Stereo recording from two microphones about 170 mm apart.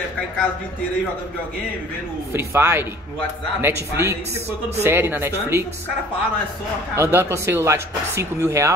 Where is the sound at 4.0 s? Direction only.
15° right (ahead or behind).